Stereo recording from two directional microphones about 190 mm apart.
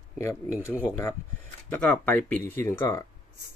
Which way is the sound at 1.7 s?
10° left (ahead or behind).